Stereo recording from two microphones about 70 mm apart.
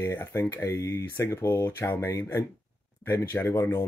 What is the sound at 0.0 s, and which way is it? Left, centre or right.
Speech, left.